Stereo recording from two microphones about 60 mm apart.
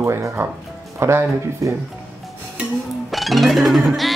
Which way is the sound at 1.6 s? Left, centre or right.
Right.